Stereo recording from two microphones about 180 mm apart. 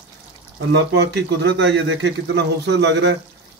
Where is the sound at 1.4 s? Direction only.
80° right.